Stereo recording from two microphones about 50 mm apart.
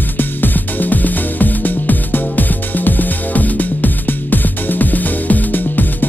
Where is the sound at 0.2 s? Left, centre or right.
Left.